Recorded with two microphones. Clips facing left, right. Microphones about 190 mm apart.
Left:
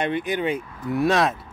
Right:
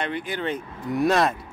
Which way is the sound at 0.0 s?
20° left (ahead or behind).